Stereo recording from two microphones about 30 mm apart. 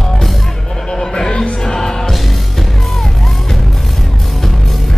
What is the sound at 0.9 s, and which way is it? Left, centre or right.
Music, centre.